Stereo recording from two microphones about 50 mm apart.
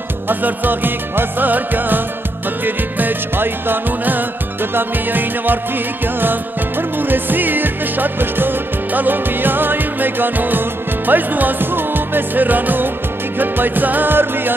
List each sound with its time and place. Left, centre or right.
0.3 s music: right
7.0 s music: right